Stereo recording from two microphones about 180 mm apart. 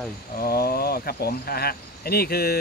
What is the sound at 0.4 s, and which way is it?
Speech, 60° left (ahead or behind).